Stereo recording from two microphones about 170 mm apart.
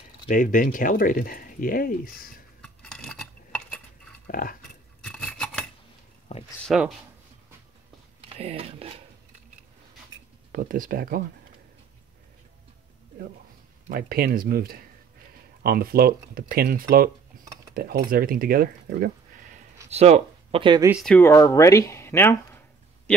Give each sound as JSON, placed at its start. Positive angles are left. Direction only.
{"t": 0.3, "sound": "speech", "side_deg": 55}
{"t": 2.6, "sound": "a sound", "side_deg": 5}
{"t": 4.3, "sound": "cutlery", "side_deg": 55}
{"t": 5.0, "sound": "a sound", "side_deg": 5}
{"t": 6.3, "sound": "speech", "side_deg": 40}
{"t": 6.6, "sound": "speech", "side_deg": 0}
{"t": 8.2, "sound": "speech", "side_deg": -35}
{"t": 10.5, "sound": "speech", "side_deg": -55}
{"t": 13.8, "sound": "speech", "side_deg": -60}
{"t": 19.9, "sound": "speech", "side_deg": -40}
{"t": 21.0, "sound": "speech", "side_deg": 10}